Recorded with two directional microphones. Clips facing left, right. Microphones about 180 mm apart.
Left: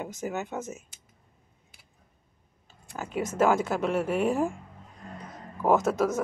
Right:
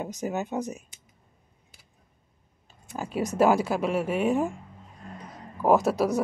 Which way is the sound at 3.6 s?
5° right (ahead or behind).